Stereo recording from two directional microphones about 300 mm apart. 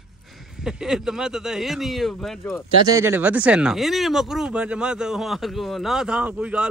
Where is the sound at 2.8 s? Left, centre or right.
Centre.